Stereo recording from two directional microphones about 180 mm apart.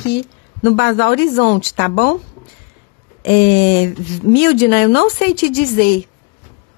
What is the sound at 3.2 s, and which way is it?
A woman's voice, 70° left (ahead or behind).